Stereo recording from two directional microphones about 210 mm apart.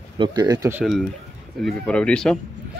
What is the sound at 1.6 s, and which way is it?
Speech, centre (ahead or behind).